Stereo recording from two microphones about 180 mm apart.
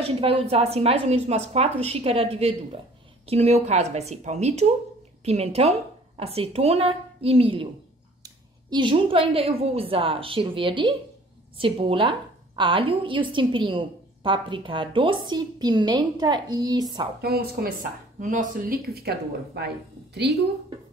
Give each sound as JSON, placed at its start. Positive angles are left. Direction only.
{"t": 0.0, "sound": "a woman's voice", "side_deg": -30}
{"t": 17.2, "sound": "a woman's voice", "side_deg": -60}
{"t": 18.2, "sound": "a woman's voice", "side_deg": -45}